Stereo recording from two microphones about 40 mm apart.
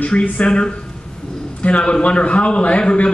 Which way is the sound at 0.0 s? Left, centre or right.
Left.